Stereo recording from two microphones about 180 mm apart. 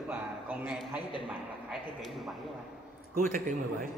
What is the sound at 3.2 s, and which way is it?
Speech, 50° right (ahead or behind).